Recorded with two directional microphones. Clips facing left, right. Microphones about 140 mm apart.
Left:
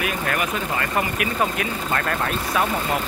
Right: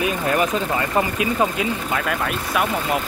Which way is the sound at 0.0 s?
25° right (ahead or behind).